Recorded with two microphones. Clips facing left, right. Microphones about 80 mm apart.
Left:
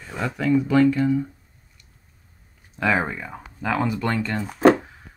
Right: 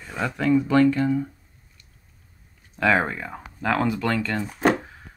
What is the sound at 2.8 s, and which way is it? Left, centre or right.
Speech, centre.